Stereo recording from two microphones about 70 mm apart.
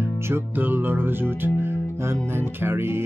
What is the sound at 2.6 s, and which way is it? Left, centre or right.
Speech, right.